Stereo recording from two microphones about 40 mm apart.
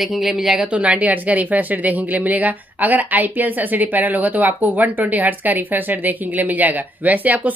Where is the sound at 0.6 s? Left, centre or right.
Right.